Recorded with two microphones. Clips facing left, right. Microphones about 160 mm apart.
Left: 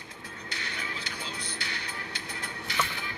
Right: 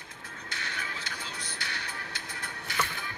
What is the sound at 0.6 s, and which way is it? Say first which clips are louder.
Music: left 1 dB; 15° left (ahead or behind).